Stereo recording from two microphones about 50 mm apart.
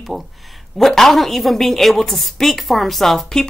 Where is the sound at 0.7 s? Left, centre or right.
Centre.